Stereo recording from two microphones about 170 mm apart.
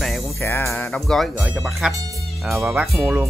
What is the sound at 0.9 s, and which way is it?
Speech, centre (ahead or behind).